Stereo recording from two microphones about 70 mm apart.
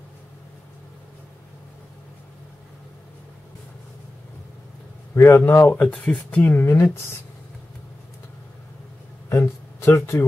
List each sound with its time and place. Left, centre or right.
5.1 s speech: left
5.7 s speech: left
9.3 s speech: left